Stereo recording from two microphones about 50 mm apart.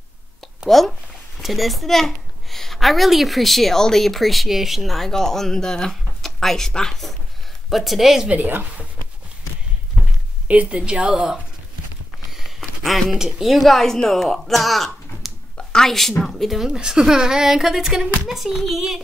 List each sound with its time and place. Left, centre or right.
0.7 s a woman's voice: centre
10.5 s a woman's voice: right
10.8 s a woman's voice: centre
12.3 s a sound: centre
13.1 s a woman's voice: centre
15.5 s a woman's voice: centre